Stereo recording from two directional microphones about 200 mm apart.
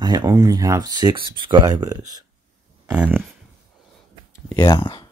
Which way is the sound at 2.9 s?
5° right (ahead or behind).